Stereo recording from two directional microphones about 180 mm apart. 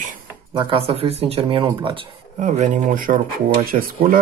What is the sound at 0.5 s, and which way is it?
Speech, 30° right (ahead or behind).